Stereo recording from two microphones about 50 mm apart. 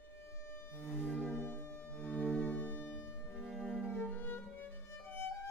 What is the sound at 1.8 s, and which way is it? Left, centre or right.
Music, left.